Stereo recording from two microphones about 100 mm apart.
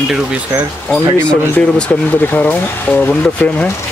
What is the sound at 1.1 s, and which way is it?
Speech, 10° left (ahead or behind).